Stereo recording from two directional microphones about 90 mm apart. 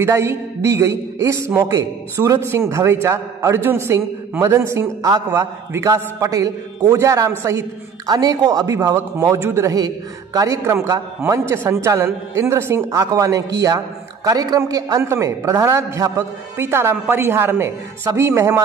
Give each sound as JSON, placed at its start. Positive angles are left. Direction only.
{"t": 0.0, "sound": "a man's voice", "side_deg": -30}
{"t": 9.8, "sound": "a man's voice", "side_deg": -45}
{"t": 16.9, "sound": "a woman's voice", "side_deg": -15}